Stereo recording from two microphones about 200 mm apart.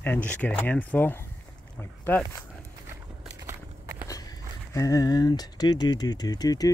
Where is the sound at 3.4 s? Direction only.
15° right (ahead or behind).